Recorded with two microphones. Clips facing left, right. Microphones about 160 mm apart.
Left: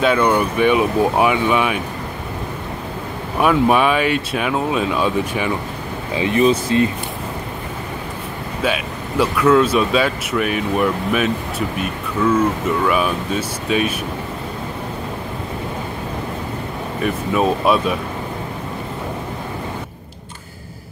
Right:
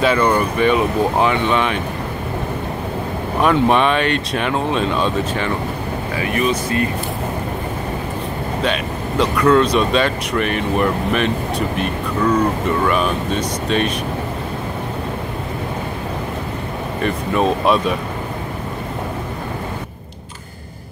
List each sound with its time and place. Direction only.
0.0 s speech: centre (ahead or behind)
3.3 s speech: 5° left (ahead or behind)
6.1 s speech: 25° left (ahead or behind)
8.6 s speech: 5° left (ahead or behind)
17.0 s speech: 5° left (ahead or behind)